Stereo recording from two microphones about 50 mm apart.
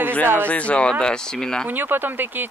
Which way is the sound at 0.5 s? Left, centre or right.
Left.